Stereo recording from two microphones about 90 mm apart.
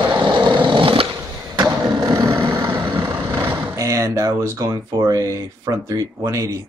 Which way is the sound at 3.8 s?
35° right (ahead or behind).